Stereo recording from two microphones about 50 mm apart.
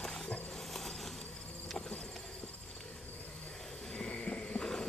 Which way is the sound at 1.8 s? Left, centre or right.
Centre.